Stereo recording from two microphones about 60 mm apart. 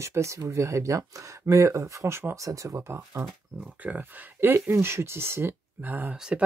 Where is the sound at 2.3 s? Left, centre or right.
Right.